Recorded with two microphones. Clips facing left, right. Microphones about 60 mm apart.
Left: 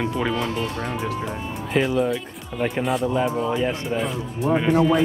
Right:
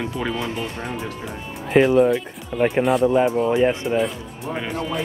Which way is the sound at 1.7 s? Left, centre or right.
Centre.